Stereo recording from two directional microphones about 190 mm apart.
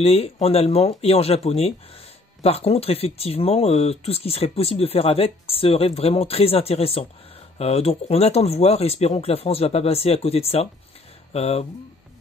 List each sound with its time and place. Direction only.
0.0 s speech: 30° left (ahead or behind)